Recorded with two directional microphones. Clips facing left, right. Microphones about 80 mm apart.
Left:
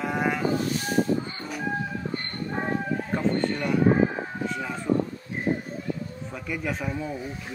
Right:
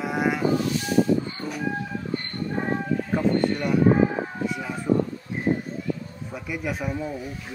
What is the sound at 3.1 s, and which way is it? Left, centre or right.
Speech, centre.